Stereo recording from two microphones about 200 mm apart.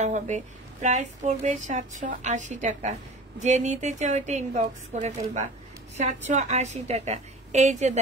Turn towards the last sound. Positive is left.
turn(degrees=-35)  # may be behind; listen again after turning